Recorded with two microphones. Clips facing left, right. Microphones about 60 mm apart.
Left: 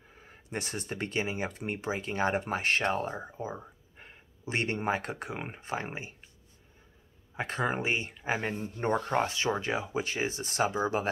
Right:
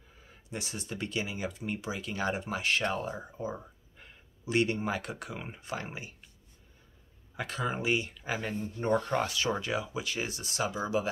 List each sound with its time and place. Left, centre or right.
0.2 s speech: left
7.3 s speech: left
10.5 s speech: left